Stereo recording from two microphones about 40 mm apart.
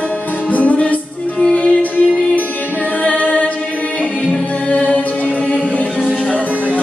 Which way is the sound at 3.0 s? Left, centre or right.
Left.